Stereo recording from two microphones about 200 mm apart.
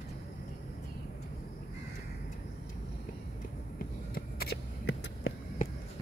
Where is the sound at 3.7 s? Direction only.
50° left (ahead or behind).